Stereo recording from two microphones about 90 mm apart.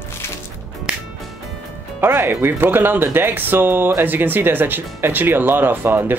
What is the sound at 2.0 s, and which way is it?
Speech, 25° right (ahead or behind).